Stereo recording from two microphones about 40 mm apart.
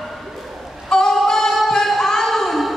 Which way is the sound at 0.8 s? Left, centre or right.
Centre.